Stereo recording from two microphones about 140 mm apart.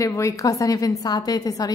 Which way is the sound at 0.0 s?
20° left (ahead or behind).